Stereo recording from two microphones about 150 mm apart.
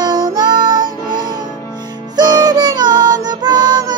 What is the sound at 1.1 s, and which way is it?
Music, 30° right (ahead or behind).